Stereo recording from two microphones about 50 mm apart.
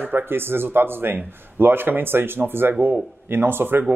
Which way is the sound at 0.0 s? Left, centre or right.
Right.